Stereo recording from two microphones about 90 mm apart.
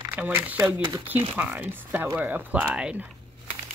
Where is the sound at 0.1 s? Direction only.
20° right (ahead or behind).